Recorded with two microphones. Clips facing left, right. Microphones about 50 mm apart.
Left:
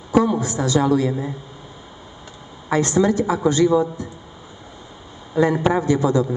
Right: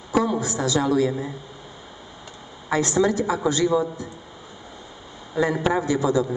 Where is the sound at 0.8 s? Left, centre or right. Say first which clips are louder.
Left 4 dB; centre.